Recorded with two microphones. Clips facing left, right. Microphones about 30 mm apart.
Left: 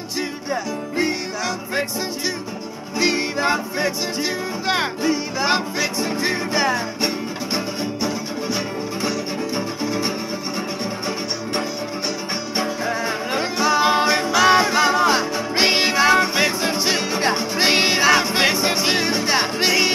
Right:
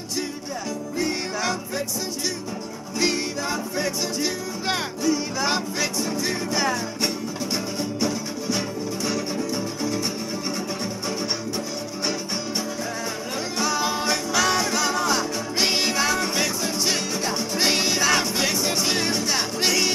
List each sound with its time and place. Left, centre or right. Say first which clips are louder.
3.0 s music: left 4 dB; centre
3.3 s music: left 6 dB; left
12.5 s music: left 6 dB; left